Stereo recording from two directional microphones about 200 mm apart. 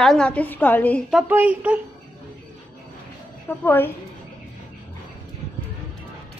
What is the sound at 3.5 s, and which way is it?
Speech, 10° left (ahead or behind).